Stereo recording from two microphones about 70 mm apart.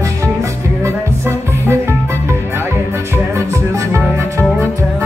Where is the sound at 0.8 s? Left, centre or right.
Right.